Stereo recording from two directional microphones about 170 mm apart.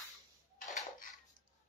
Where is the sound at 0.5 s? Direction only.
55° left (ahead or behind).